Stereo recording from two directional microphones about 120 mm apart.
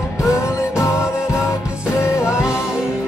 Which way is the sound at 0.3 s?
25° left (ahead or behind).